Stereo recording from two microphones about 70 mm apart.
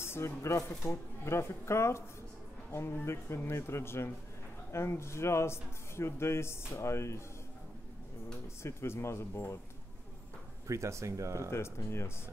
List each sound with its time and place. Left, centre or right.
0.0 s speech: left
8.6 s speech: left
10.7 s speech: right
11.5 s speech: left